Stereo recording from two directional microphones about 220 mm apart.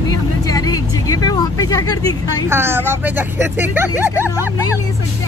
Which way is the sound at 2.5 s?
10° right (ahead or behind).